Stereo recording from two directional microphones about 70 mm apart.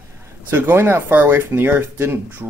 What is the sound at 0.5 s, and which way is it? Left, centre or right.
Speech, right.